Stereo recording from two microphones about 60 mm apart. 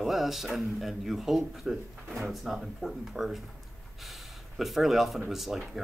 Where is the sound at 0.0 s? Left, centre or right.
Centre.